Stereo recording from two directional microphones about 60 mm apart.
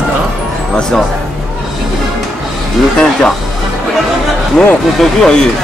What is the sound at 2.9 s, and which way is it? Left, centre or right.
Speech, centre.